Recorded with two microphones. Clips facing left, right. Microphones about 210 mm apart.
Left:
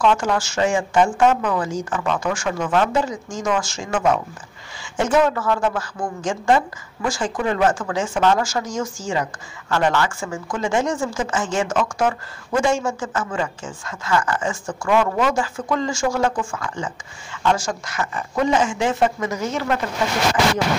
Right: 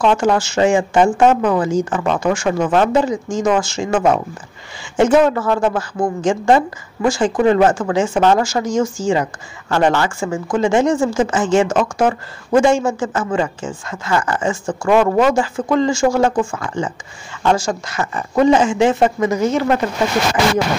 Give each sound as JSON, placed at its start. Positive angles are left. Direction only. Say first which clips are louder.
{"t": 0.0, "sound": "a woman's voice", "louder": "right 4 dB", "side_deg": -30}
{"t": 15.0, "sound": "speech", "louder": "right 6 dB", "side_deg": -50}
{"t": 15.2, "sound": "a woman's voice", "louder": "right 6 dB", "side_deg": -30}